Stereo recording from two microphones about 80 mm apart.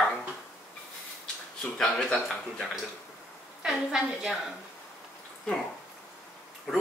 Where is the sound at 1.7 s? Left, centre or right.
Centre.